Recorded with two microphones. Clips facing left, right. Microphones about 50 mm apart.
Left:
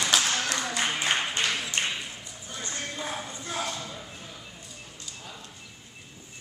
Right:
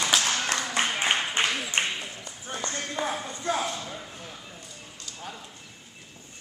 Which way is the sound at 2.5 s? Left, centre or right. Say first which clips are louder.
Right 4 dB; right.